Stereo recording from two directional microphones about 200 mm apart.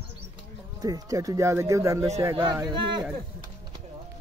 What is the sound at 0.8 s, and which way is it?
Speech, 20° right (ahead or behind).